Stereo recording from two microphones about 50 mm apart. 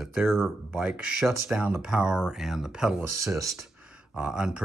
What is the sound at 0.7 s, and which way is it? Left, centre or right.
Speech, right.